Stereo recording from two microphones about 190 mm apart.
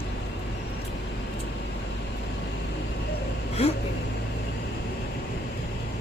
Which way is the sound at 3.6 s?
30° left (ahead or behind).